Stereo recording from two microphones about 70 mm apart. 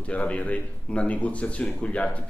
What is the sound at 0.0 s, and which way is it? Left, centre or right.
Speech, centre.